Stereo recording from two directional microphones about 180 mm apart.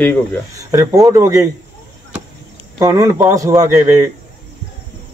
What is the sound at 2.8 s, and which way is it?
Speech, 15° right (ahead or behind).